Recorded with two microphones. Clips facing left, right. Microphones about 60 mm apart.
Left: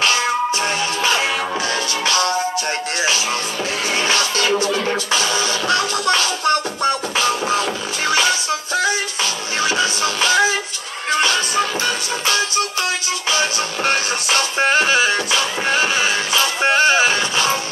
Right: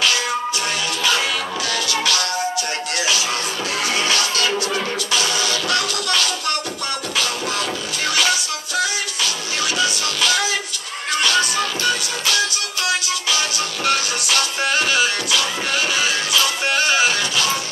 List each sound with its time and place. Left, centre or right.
0.0 s music: left
3.9 s music: left